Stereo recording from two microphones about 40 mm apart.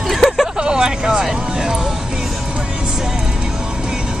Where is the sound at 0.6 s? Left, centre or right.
Centre.